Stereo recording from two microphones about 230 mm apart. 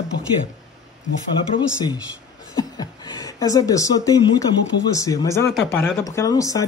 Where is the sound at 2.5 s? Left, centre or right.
Centre.